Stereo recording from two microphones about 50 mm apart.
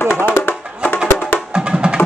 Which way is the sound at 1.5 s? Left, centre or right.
Centre.